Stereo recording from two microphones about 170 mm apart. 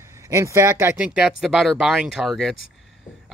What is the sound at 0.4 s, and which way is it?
Speech, 20° right (ahead or behind).